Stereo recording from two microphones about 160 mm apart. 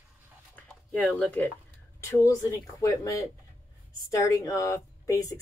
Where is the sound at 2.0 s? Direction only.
20° left (ahead or behind).